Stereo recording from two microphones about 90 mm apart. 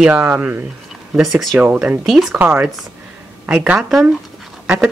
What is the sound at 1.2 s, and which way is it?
Speech, centre (ahead or behind).